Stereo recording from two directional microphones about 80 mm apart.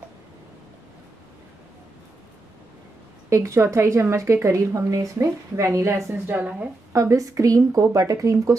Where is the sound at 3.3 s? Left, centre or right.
Right; by 6.6 s centre.